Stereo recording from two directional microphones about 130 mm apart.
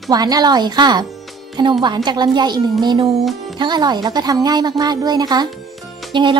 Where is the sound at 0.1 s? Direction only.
30° right (ahead or behind).